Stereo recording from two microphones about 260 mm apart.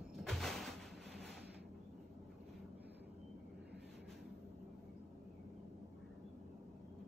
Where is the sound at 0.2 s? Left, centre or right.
Centre.